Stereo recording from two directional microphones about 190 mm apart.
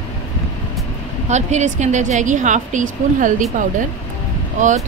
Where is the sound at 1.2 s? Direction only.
35° right (ahead or behind).